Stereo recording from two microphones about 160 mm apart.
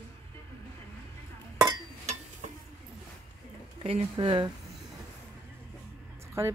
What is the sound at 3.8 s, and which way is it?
Speech, 35° right (ahead or behind).